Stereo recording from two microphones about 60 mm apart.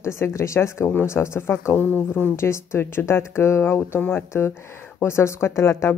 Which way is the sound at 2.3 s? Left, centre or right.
Left.